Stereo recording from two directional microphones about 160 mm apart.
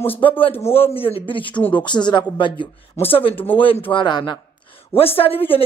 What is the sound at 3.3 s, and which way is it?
Speech, 10° left (ahead or behind).